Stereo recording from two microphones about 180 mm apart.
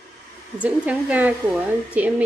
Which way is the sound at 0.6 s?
5° right (ahead or behind).